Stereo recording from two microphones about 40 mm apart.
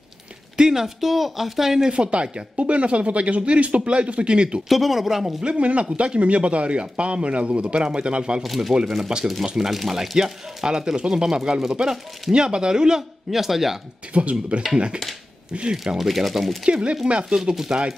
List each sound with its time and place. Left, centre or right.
0.6 s speech: centre
1.9 s speech: right
4.6 s speech: centre
5.4 s speech: right
8.4 s speech: centre
10.1 s speech: centre
13.3 s speech: centre
14.1 s speech: right
15.7 s speech: centre
16.0 s speech: centre
16.8 s speech: right